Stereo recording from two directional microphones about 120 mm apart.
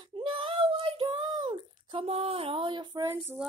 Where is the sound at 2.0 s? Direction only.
60° right (ahead or behind); by 3.0 s 40° right (ahead or behind).